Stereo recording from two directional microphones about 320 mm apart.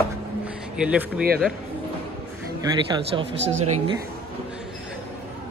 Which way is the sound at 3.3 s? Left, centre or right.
Right.